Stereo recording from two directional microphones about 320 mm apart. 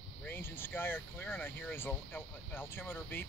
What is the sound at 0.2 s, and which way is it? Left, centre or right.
Speech, centre.